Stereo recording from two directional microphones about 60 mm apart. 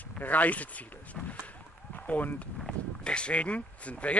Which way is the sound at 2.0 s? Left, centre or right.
Left.